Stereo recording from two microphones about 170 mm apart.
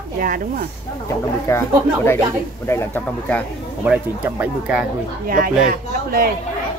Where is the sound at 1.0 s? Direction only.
15° left (ahead or behind).